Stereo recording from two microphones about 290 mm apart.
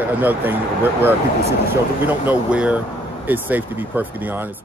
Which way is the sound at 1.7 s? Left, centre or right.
Centre.